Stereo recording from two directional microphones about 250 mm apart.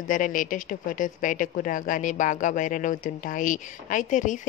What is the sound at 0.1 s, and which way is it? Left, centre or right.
Speech, left.